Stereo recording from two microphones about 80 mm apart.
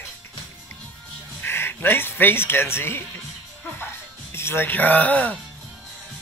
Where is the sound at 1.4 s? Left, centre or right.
Left.